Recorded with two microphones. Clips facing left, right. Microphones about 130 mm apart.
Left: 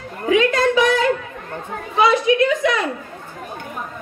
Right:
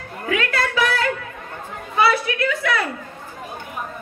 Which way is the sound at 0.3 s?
20° left (ahead or behind).